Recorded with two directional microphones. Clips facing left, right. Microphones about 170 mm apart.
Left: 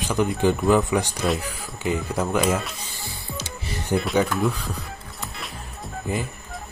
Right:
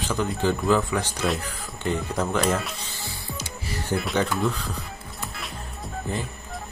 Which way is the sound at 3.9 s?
20° left (ahead or behind).